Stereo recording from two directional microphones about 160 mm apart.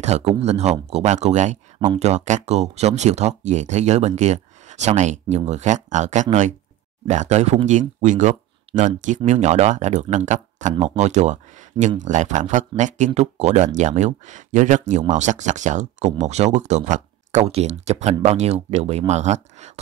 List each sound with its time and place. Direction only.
0.0 s speech: 45° right (ahead or behind)